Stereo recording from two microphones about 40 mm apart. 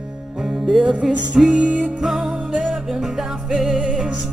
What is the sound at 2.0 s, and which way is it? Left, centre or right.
Music, centre.